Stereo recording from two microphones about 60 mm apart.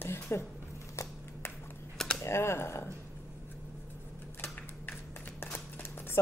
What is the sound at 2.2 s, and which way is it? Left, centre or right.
Speech, left.